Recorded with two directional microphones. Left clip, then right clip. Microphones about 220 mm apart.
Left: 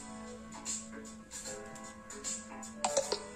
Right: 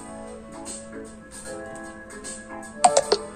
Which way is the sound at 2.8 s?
45° right (ahead or behind).